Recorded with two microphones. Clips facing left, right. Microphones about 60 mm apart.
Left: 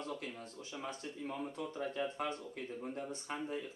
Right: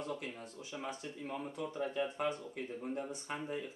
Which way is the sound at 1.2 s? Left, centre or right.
Centre.